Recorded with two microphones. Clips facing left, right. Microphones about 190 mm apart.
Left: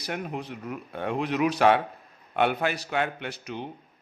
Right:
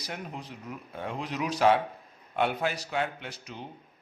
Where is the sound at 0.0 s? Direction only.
60° left (ahead or behind).